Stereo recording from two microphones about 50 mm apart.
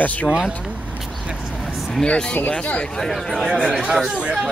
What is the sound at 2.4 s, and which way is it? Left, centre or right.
Speech, left.